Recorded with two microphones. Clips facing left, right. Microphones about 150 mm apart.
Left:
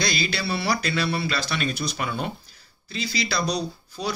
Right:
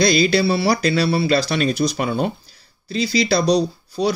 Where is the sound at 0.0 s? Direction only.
35° right (ahead or behind).